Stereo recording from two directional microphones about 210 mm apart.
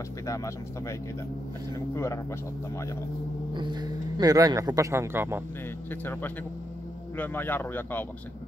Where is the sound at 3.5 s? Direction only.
20° right (ahead or behind).